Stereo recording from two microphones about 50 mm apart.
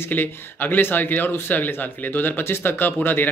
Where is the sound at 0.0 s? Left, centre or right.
Left.